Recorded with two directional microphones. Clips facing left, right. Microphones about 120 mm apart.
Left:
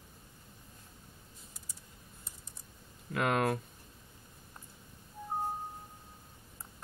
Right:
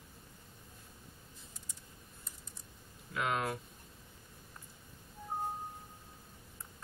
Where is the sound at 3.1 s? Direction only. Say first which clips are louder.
Left 5 dB; 55° left (ahead or behind).